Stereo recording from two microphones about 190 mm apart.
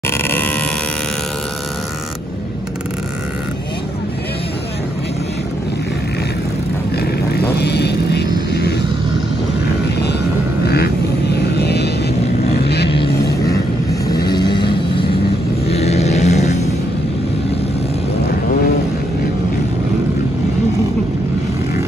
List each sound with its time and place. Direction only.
0.2 s vehicle: 10° left (ahead or behind)
7.5 s vehicle: 60° left (ahead or behind)
11.5 s vehicle: 60° left (ahead or behind)
14.2 s vehicle: 20° left (ahead or behind)